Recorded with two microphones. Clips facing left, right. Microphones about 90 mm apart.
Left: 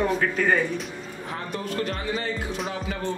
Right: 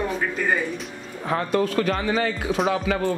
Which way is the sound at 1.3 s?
90° right.